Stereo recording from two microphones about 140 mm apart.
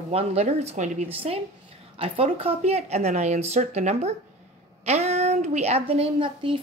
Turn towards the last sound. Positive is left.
turn(degrees=-35)  # may be behind; listen again after turning